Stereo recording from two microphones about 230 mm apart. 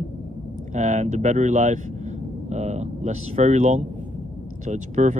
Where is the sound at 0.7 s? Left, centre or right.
Right.